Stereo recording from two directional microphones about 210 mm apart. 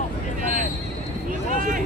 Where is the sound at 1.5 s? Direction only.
40° right (ahead or behind).